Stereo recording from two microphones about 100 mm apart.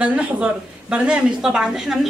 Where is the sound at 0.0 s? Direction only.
10° right (ahead or behind).